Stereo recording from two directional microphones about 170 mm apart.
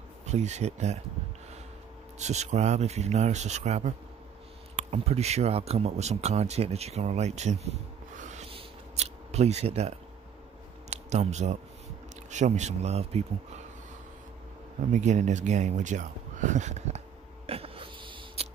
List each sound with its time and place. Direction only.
0.3 s speech: 40° right (ahead or behind)
2.1 s speech: 40° right (ahead or behind)
4.9 s speech: 40° right (ahead or behind)
10.9 s a sound: 40° right (ahead or behind)
12.3 s speech: 45° right (ahead or behind)
14.9 s speech: 45° right (ahead or behind)
17.5 s a sound: 35° right (ahead or behind)